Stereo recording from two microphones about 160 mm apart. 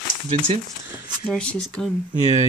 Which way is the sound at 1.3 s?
5° left (ahead or behind).